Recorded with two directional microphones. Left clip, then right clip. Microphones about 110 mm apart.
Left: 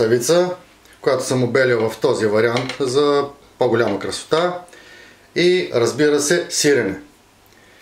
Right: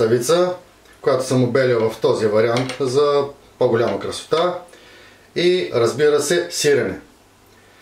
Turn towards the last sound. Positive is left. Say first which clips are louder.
# left 1 dB
turn(degrees=35)  # may be behind; listen again after turning